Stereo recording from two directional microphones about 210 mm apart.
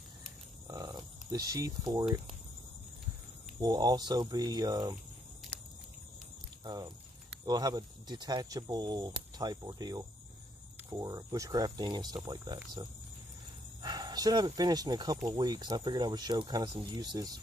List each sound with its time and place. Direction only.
0.7 s a sound: 20° right (ahead or behind)
3.6 s speech: 20° right (ahead or behind)
6.6 s speech: 20° right (ahead or behind)